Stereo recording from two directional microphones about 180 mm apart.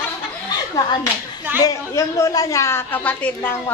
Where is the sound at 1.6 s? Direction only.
20° left (ahead or behind).